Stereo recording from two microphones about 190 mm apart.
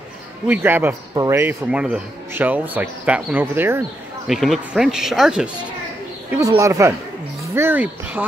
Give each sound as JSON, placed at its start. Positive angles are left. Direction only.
{"t": 0.5, "sound": "speech", "side_deg": -10}
{"t": 6.6, "sound": "speech", "side_deg": -15}